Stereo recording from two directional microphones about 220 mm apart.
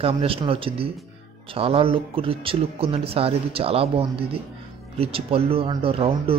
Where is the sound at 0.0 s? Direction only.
25° right (ahead or behind).